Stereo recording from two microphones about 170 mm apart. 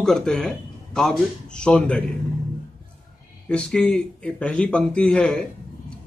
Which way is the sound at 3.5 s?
5° left (ahead or behind).